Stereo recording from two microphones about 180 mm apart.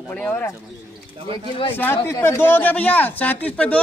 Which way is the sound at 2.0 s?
15° left (ahead or behind).